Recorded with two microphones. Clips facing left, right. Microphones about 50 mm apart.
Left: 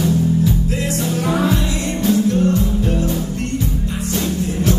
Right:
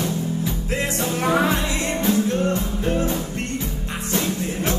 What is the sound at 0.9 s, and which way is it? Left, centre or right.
Music, right.